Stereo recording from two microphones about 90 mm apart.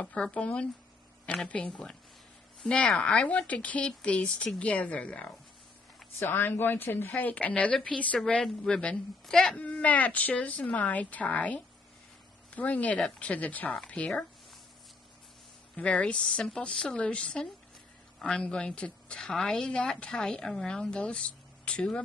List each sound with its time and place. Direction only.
0.0 s a woman's voice: 15° left (ahead or behind)
6.1 s a woman's voice: 25° left (ahead or behind)
15.7 s a woman's voice: 15° left (ahead or behind)